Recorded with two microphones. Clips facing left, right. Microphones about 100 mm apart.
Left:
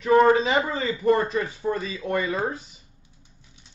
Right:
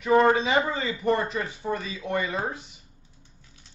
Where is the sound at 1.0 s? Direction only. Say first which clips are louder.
Left 4 dB; 25° right (ahead or behind).